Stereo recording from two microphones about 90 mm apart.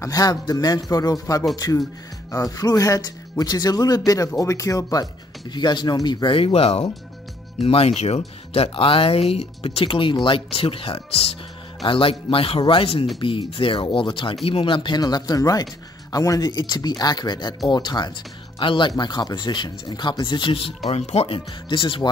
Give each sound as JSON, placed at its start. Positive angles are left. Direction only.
{"t": 0.0, "sound": "speech", "side_deg": 45}
{"t": 5.5, "sound": "speech", "side_deg": 55}
{"t": 6.2, "sound": "speech", "side_deg": 90}
{"t": 13.2, "sound": "speech", "side_deg": 70}
{"t": 15.0, "sound": "speech", "side_deg": 50}
{"t": 18.6, "sound": "speech", "side_deg": 65}